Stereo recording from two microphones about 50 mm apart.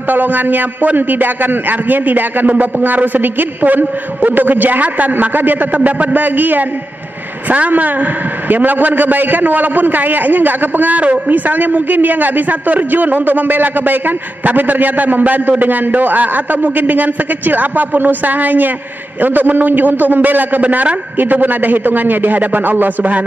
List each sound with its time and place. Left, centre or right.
0.1 s a man's voice: right